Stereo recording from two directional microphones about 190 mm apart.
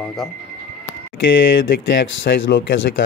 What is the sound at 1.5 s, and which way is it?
Speech, 70° left (ahead or behind).